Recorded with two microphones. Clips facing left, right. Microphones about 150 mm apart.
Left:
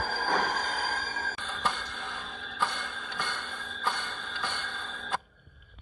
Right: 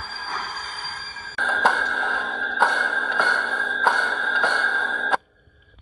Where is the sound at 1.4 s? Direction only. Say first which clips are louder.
Right 14 dB; 90° right.